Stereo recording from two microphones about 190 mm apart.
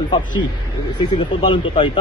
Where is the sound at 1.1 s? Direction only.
25° left (ahead or behind).